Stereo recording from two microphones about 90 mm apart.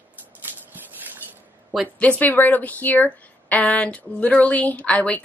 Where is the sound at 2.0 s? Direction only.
15° left (ahead or behind).